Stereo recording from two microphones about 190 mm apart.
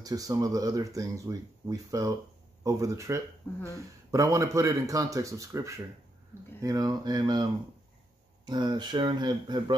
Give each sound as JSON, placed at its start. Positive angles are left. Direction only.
{"t": 0.0, "sound": "a man's voice", "side_deg": -20}